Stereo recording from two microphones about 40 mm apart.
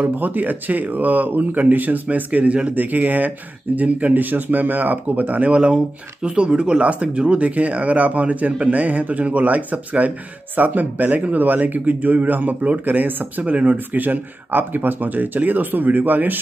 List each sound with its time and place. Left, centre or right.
0.0 s speech: right
2.7 s speech: right
6.2 s speech: right